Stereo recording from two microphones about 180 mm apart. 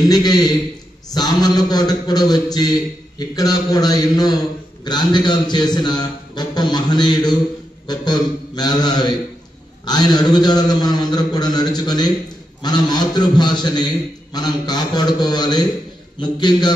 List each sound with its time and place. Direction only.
0.1 s a man's voice: 20° left (ahead or behind)